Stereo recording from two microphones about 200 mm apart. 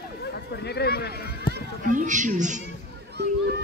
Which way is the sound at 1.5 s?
40° right (ahead or behind).